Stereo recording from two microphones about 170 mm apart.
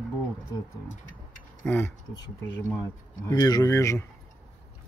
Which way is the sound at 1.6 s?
10° left (ahead or behind).